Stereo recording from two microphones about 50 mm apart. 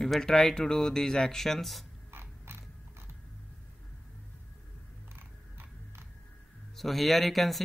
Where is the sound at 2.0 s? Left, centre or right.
Right.